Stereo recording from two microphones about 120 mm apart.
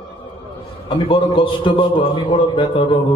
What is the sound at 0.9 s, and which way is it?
A man's voice, 45° left (ahead or behind).